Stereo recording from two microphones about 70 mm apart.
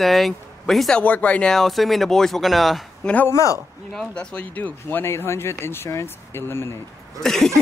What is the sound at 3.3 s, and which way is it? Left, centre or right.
Speech, left.